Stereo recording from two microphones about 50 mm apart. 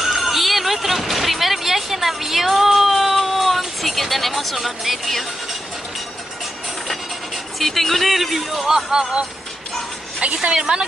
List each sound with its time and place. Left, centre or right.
0.0 s vehicle: centre
7.5 s speech: centre
10.2 s a woman's voice: right